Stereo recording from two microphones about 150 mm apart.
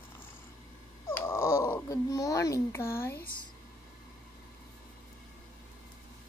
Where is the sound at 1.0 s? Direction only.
15° left (ahead or behind).